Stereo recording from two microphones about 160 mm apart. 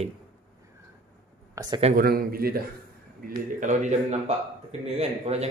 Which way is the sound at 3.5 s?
50° right (ahead or behind).